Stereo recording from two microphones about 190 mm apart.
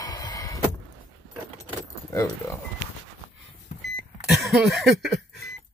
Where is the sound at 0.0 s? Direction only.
20° left (ahead or behind).